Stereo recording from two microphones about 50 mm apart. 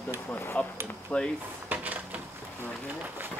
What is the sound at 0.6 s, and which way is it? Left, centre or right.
Speech, left.